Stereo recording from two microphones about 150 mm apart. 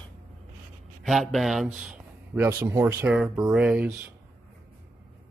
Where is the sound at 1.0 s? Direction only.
Centre (ahead or behind); by 3.1 s 15° right (ahead or behind).